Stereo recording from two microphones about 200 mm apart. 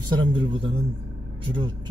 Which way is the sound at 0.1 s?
25° right (ahead or behind).